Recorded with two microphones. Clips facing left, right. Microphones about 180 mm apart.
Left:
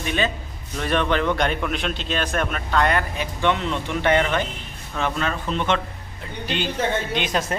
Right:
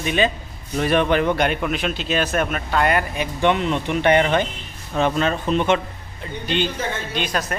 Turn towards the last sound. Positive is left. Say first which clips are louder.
# left 1 dB
turn(degrees=25)  # may be behind; listen again after turning